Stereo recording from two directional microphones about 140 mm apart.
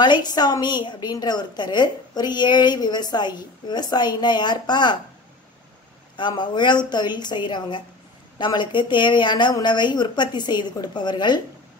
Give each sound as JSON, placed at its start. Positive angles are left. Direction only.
{"t": 0.0, "sound": "a woman's voice", "side_deg": 30}
{"t": 6.1, "sound": "a woman's voice", "side_deg": 35}